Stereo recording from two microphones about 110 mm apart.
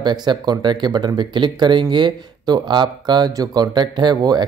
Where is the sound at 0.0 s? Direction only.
40° right (ahead or behind).